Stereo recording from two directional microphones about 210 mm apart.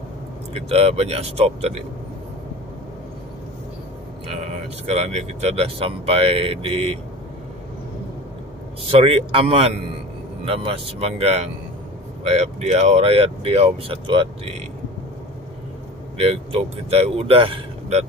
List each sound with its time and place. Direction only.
0.6 s speech: 30° right (ahead or behind)
4.3 s speech: 30° right (ahead or behind)
9.0 s speech: 25° right (ahead or behind)
16.2 s speech: 30° right (ahead or behind)